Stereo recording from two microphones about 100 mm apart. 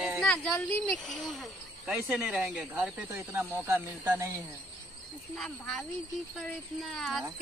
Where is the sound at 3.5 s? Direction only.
25° right (ahead or behind).